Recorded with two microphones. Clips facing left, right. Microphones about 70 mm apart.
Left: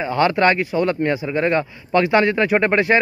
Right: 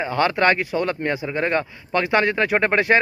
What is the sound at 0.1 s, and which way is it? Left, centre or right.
A man's voice, right.